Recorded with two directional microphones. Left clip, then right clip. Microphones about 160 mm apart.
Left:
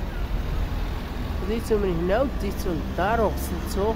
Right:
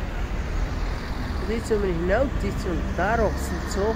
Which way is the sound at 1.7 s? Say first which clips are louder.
Even; 15° left (ahead or behind).